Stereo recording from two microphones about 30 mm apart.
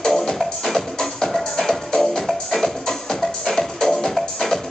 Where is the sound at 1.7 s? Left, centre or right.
Left.